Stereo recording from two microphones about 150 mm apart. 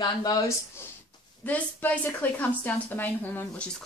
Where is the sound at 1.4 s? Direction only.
10° left (ahead or behind).